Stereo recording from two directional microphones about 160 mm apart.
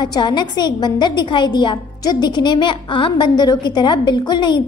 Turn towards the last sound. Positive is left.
turn(degrees=30)  # may be behind; listen again after turning